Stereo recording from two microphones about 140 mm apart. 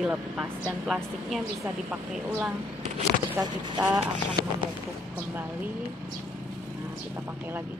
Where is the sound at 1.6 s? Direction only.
10° right (ahead or behind).